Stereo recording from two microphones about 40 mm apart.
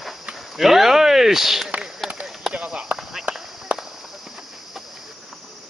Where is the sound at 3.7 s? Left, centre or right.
Right.